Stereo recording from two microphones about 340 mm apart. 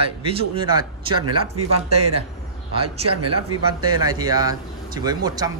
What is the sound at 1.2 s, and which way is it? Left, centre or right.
Speech, right.